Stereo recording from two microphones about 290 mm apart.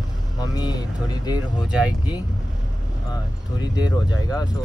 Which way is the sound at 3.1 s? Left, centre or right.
Centre.